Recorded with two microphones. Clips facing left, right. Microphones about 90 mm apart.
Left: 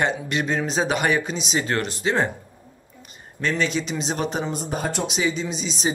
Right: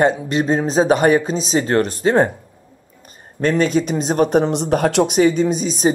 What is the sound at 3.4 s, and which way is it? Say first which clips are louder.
Speech: right 7 dB; 45° right (ahead or behind).